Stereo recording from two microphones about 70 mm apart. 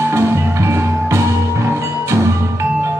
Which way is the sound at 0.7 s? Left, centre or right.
Right.